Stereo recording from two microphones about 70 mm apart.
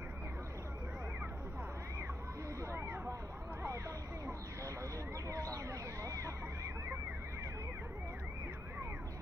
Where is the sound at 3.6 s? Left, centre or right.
Right.